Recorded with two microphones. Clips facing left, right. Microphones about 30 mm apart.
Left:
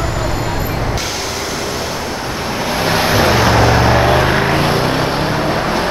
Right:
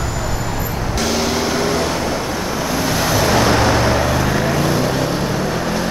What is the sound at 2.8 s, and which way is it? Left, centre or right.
Vehicle, left.